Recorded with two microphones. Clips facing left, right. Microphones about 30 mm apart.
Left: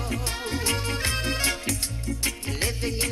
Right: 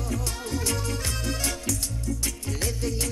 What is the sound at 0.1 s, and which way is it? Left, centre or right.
Music, left.